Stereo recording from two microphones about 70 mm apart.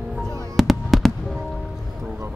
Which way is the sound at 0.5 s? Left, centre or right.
Centre.